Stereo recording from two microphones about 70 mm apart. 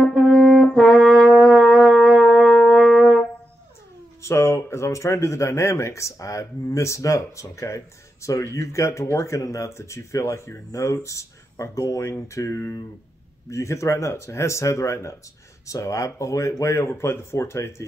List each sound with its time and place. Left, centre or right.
0.0 s brass instrument: centre
4.2 s speech: left